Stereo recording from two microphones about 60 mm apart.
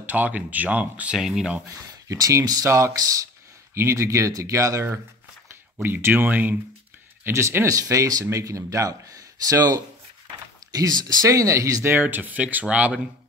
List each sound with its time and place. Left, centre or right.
0.0 s speech: right
1.1 s speech: centre
2.0 s speech: right
5.8 s speech: right
7.2 s speech: right
7.6 s speech: right
8.3 s speech: right
12.0 s speech: right